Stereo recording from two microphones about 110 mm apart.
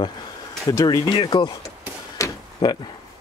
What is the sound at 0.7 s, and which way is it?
Speech, 35° left (ahead or behind).